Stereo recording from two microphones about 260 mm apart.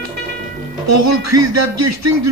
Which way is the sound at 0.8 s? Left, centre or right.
Right.